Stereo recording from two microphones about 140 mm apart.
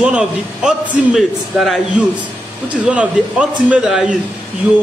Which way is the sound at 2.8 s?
10° right (ahead or behind).